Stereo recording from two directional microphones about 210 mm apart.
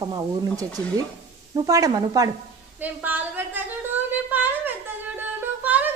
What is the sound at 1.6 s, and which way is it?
Speech, 15° right (ahead or behind).